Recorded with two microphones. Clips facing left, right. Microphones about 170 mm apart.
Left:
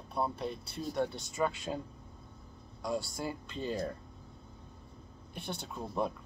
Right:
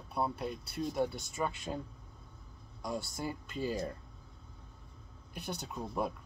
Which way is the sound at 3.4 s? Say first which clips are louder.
Right 1 dB; 10° right (ahead or behind).